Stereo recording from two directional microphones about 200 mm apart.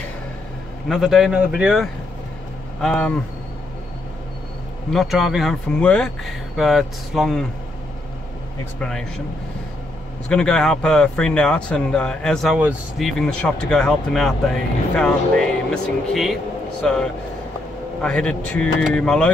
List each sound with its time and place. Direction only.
0.8 s speech: centre (ahead or behind)
4.9 s speech: centre (ahead or behind)
8.7 s speech: 5° left (ahead or behind)
10.2 s speech: 5° left (ahead or behind)